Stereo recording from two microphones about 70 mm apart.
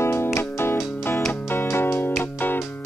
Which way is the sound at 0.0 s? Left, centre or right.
Left.